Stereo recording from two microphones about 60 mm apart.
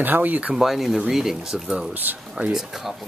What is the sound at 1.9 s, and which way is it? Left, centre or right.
Speech, right.